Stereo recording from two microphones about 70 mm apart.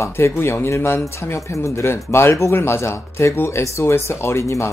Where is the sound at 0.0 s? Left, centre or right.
Left.